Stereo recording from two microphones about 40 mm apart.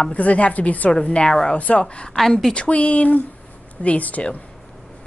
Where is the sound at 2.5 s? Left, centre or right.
Left.